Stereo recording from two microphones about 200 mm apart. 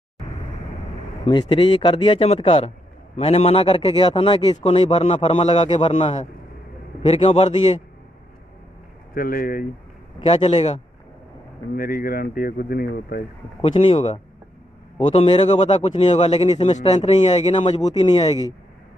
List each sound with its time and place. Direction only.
1.2 s a man's voice: 25° left (ahead or behind)
9.1 s speech: 45° left (ahead or behind)
10.1 s speech: 30° left (ahead or behind)
11.7 s speech: 45° left (ahead or behind)
13.6 s a man's voice: 30° left (ahead or behind)